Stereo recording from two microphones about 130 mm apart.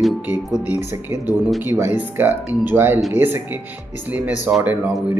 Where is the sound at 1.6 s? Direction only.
20° right (ahead or behind).